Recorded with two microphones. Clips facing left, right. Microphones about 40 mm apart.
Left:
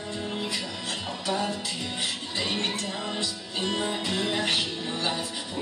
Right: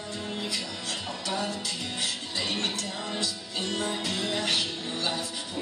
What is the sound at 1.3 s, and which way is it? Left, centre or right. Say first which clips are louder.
Music: left 3 dB; centre.